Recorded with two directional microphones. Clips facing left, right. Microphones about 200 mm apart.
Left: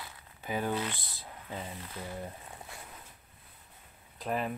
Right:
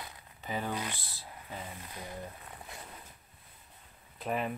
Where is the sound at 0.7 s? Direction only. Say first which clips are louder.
Left 4 dB; 15° right (ahead or behind).